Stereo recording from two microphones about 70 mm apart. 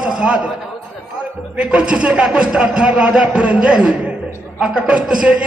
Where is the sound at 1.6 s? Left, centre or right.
Centre.